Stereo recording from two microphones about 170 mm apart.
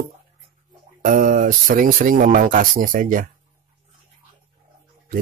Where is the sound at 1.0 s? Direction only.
50° right (ahead or behind).